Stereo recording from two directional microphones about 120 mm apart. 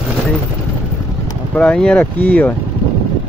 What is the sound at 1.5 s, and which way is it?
Speech, 5° left (ahead or behind).